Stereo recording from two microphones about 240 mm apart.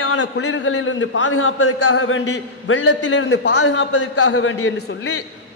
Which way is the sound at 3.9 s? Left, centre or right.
Left.